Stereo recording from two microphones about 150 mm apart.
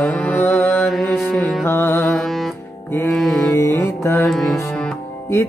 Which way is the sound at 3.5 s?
20° left (ahead or behind).